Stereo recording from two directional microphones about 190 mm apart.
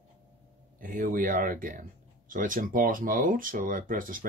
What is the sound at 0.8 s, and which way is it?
Speech, 45° right (ahead or behind).